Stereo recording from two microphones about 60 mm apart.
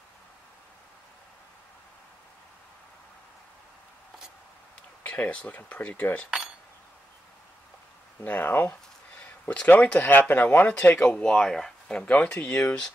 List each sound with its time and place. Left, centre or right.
5.0 s speech: left
8.2 s speech: left
9.5 s speech: left
11.4 s speech: centre
12.0 s speech: left